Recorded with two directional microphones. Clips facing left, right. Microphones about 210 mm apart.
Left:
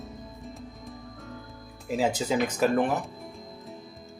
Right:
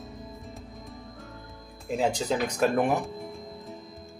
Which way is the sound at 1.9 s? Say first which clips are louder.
Even; 5° left (ahead or behind).